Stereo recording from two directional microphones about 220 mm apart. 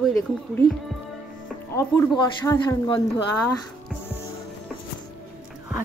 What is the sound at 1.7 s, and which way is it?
Speech, 15° left (ahead or behind).